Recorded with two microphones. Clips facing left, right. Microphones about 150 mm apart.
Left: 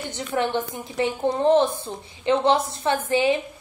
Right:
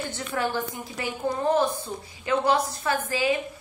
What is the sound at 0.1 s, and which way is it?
A woman's voice, 20° left (ahead or behind).